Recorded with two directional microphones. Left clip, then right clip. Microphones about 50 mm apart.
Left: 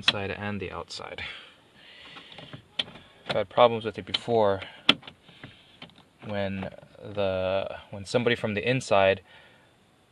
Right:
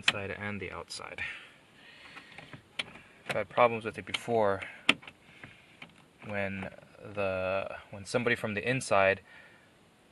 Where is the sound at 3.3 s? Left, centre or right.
Centre.